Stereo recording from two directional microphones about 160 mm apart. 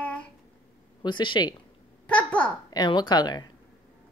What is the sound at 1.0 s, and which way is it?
Speech, 30° left (ahead or behind).